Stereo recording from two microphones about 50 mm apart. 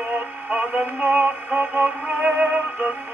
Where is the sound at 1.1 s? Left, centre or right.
Right.